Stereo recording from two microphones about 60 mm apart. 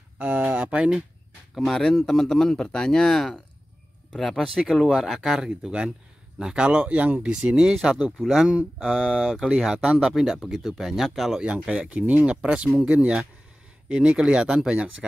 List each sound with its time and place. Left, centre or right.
0.2 s speech: right
0.7 s speech: centre
1.5 s speech: centre; by 7.3 s right
7.4 s speech: centre
8.7 s mantra: centre
9.4 s speech: centre
11.4 s speech: centre